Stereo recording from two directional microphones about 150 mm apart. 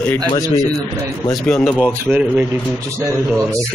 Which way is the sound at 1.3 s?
Centre (ahead or behind).